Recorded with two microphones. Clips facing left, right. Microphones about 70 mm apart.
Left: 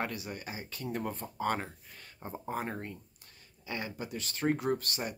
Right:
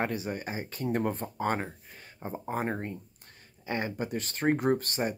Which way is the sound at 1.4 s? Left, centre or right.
Right.